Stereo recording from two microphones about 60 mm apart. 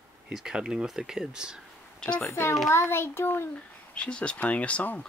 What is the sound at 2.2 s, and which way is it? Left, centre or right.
A child's voice, left.